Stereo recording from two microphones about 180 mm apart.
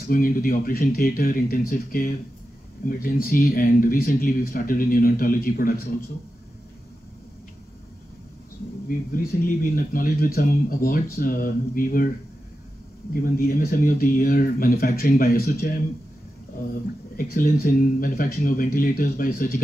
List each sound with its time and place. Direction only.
0.0 s speech: 50° left (ahead or behind)
8.8 s speech: 50° left (ahead or behind)
13.1 s speech: 50° left (ahead or behind)
17.2 s speech: 50° left (ahead or behind)